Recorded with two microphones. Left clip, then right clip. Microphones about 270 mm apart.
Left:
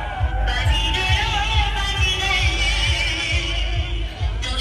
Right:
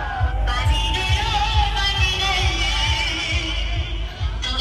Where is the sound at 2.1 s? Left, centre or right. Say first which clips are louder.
Even; right.